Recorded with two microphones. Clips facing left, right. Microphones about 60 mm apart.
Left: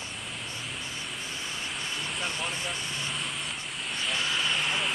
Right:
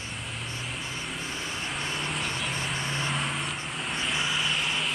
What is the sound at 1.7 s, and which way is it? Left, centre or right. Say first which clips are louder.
Vehicle: right 3 dB; right.